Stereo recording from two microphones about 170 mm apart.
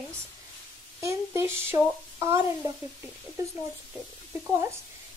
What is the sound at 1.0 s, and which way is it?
Speech, 15° right (ahead or behind).